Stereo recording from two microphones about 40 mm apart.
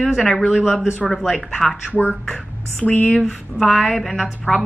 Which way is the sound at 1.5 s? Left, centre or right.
Centre.